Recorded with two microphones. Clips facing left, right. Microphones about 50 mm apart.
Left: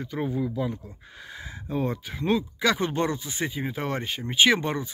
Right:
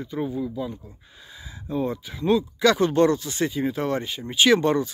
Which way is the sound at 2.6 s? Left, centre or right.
Centre.